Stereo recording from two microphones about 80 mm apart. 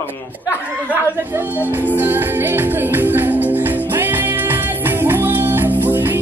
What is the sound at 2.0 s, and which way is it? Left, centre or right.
Music, right.